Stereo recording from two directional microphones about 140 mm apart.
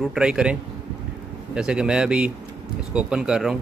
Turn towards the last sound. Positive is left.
turn(degrees=-5)  # may be behind; listen again after turning